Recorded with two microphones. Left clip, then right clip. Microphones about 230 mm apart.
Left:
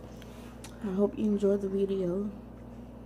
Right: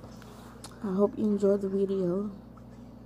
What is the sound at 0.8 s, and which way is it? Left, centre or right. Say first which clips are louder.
A woman's voice: right 2 dB; centre.